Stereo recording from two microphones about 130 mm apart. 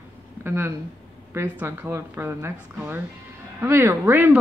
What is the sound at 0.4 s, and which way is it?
Speech, 15° right (ahead or behind).